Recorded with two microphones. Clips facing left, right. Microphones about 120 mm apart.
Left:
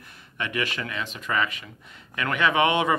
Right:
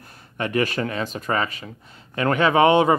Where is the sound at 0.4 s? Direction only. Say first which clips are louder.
Right 7 dB; 40° right (ahead or behind).